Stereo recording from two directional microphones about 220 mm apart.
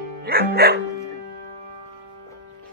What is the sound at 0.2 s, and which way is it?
Music, 45° right (ahead or behind).